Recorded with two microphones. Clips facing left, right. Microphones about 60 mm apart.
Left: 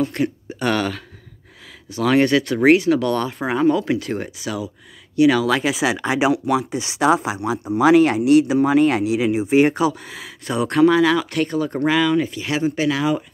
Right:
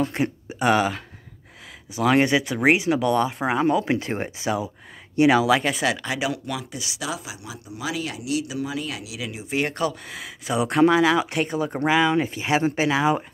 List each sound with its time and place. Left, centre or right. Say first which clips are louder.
0.1 s speech: left 3 dB; centre
3.6 s speech: left 6 dB; right
5.5 s speech: left 1 dB; centre
5.9 s speech: left 8 dB; left
6.3 s speech: left 11 dB; centre
6.7 s speech: left 13 dB; left
9.6 s speech: left 7 dB; centre
10.0 s speech: left 2 dB; centre
12.1 s speech: left 1 dB; right